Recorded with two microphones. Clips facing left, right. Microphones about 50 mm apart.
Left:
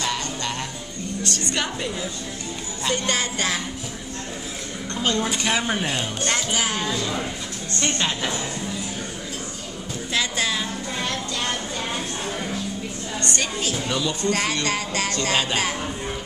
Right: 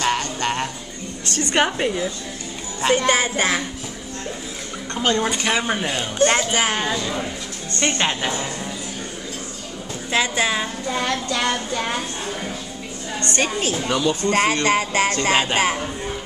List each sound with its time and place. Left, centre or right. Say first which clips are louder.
0.0 s music: right 5 dB; right
1.3 s speech: right 10 dB; right
3.1 s a woman's voice: right 5 dB; right
4.9 s a woman's voice: right 3 dB; right
5.4 s speech: right 2 dB; centre
6.2 s speech: right 8 dB; right
7.0 s speech: right 1 dB; centre
7.8 s a woman's voice: right 4 dB; right
10.1 s a woman's voice: right 4 dB; right
11.2 s child singing: right 5 dB; right
13.2 s speech: right 5 dB; right